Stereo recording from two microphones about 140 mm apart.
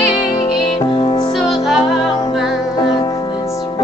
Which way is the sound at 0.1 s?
30° left (ahead or behind).